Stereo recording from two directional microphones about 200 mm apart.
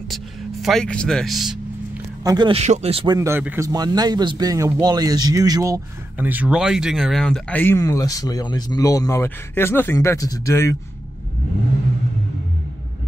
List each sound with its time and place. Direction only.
0.1 s speech: centre (ahead or behind)
2.2 s speech: 20° right (ahead or behind)
3.2 s speech: 10° right (ahead or behind); by 10.8 s 15° left (ahead or behind)